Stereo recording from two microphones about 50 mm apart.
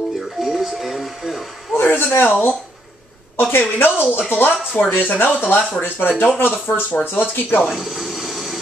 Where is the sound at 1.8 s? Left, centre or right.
Left.